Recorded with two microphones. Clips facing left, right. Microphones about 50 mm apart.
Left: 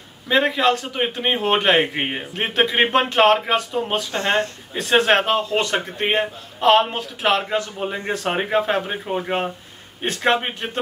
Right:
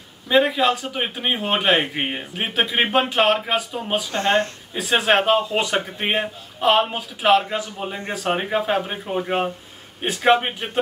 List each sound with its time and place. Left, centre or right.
0.3 s a man's voice: centre
4.1 s speech: left
4.7 s a man's voice: centre
8.3 s a man's voice: centre
10.0 s a man's voice: centre